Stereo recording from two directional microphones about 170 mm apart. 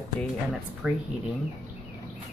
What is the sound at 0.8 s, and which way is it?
Speech, 5° right (ahead or behind).